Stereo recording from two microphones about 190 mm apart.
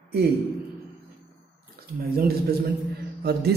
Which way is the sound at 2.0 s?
50° right (ahead or behind).